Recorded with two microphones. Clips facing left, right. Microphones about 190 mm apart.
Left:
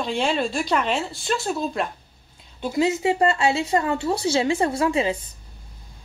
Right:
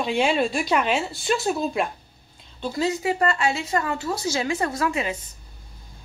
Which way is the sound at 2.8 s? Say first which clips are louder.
Left 2 dB; 25° left (ahead or behind).